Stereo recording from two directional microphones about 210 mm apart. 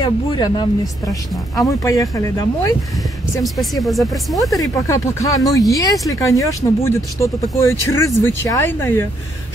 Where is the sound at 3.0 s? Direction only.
Centre (ahead or behind).